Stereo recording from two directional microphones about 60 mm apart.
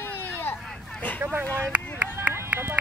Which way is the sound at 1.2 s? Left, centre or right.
Right.